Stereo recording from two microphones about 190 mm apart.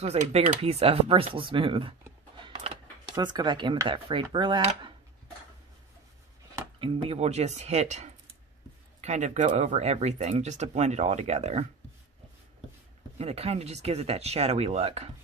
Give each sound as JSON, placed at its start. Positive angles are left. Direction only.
{"t": 0.0, "sound": "speech", "side_deg": -35}
{"t": 6.8, "sound": "speech", "side_deg": -30}
{"t": 13.2, "sound": "speech", "side_deg": -35}